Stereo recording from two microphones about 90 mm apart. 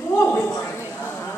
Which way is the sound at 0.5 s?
25° left (ahead or behind).